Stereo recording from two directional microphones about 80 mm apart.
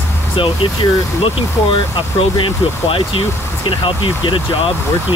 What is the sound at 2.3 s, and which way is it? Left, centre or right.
Speech, left.